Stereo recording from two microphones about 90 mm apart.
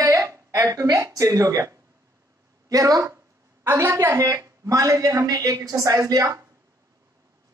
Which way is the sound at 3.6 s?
25° right (ahead or behind).